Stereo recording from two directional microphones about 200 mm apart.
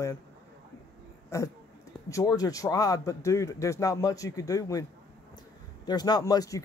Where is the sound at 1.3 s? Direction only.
15° left (ahead or behind).